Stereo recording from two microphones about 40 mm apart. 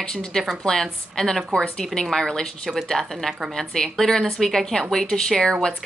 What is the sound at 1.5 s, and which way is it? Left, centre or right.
Speech, left.